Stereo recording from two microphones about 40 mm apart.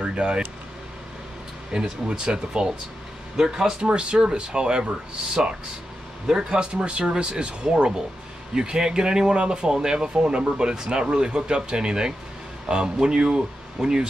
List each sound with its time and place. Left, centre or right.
0.0 s speech: right
1.7 s speech: centre
6.2 s speech: centre
6.6 s speech: right